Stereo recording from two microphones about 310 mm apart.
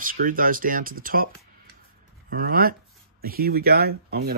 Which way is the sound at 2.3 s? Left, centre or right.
Right.